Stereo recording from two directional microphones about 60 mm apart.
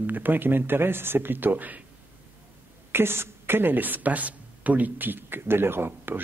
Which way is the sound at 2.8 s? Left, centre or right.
Right.